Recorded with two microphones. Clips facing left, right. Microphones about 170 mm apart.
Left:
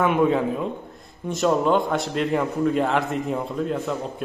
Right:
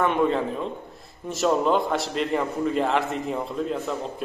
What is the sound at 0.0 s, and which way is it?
A man's voice, 5° left (ahead or behind).